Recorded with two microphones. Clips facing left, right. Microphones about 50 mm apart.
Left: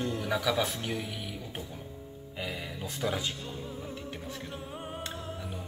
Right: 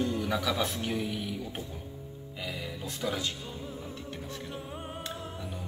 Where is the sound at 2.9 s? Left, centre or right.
Centre.